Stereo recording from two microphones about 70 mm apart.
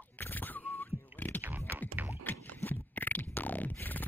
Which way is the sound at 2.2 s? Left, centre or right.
Left.